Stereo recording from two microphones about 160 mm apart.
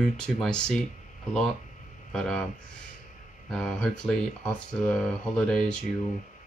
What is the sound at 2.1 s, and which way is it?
Speech, 5° left (ahead or behind).